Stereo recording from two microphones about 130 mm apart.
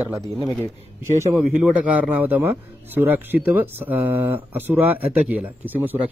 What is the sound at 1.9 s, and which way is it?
A man's voice, 10° right (ahead or behind).